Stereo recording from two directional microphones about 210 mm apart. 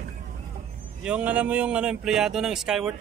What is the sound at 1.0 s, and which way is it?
Speech, 5° right (ahead or behind).